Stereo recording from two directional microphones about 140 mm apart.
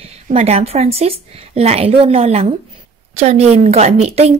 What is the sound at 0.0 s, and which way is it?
A woman's voice, 45° right (ahead or behind).